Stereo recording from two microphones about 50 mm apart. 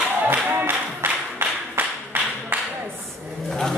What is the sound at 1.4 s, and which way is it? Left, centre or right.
Clapping, right.